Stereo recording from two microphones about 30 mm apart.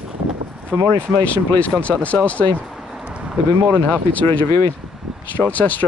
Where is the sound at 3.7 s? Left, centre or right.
Left.